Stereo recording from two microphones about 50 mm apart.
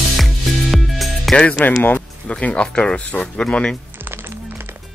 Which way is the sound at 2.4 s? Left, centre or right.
Left.